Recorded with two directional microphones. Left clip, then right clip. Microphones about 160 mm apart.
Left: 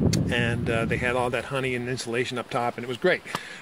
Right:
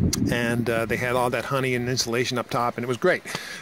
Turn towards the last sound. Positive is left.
turn(degrees=-45)  # may be behind; listen again after turning